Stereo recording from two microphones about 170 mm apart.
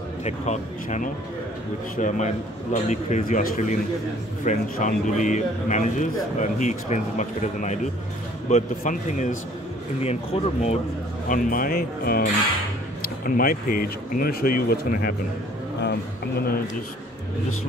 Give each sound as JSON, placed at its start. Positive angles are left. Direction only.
{"t": 0.2, "sound": "a man's voice", "side_deg": 45}
{"t": 10.0, "sound": "speech", "side_deg": 35}
{"t": 11.2, "sound": "speech", "side_deg": 55}
{"t": 15.8, "sound": "a man's voice", "side_deg": 75}